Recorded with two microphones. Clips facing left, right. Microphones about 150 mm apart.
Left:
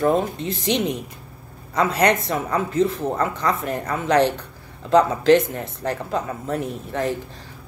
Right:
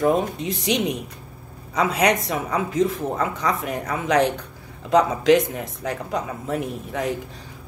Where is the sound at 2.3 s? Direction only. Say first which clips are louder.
Left 1 dB; 10° right (ahead or behind).